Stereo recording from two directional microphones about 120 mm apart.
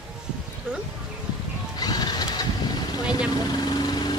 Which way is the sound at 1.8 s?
35° left (ahead or behind).